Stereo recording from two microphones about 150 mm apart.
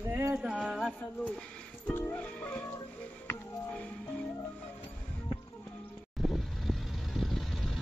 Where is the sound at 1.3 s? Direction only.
5° left (ahead or behind).